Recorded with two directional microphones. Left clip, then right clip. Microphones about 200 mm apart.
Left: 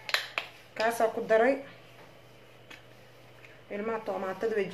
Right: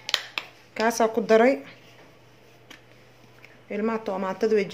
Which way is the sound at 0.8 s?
60° right (ahead or behind).